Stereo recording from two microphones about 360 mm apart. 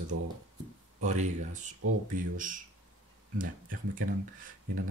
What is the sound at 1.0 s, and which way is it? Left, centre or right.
Speech, centre.